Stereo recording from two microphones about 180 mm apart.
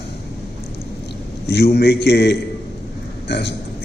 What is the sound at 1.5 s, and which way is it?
A man's voice, 65° left (ahead or behind).